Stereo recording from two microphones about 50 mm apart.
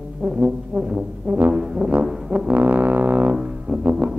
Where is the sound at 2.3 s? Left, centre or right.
Right.